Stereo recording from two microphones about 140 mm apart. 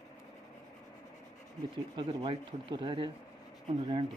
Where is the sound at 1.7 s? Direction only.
35° right (ahead or behind).